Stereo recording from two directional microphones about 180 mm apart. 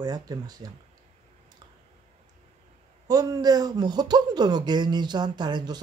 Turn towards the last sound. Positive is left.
turn(degrees=-25)  # may be behind; listen again after turning